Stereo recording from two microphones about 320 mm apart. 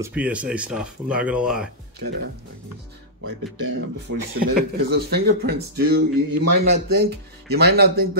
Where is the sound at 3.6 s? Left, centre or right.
Right.